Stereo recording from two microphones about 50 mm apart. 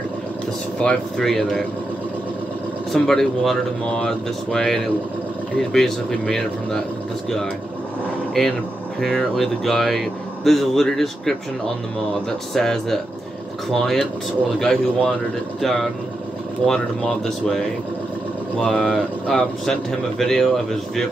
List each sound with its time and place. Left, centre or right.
0.8 s speech: left
1.1 s a man's voice: centre
2.9 s speech: centre
8.4 s a man's voice: centre
12.5 s a man's voice: centre
18.7 s speech: centre